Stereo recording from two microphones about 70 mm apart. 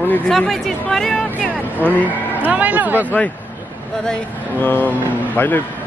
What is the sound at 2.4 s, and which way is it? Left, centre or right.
Speech, right.